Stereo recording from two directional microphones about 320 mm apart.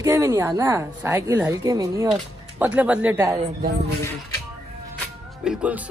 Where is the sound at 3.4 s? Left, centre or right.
Right.